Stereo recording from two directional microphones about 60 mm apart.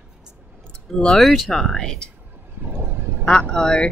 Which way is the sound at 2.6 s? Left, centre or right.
Right.